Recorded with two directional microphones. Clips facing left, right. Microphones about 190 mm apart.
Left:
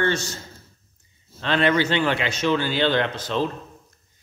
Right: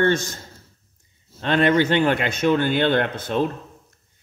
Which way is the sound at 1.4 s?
50° right (ahead or behind).